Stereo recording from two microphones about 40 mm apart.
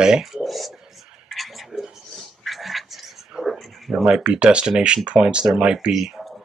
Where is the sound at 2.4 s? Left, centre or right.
Centre.